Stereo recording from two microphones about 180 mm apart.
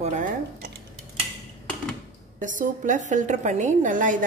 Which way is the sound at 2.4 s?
45° right (ahead or behind).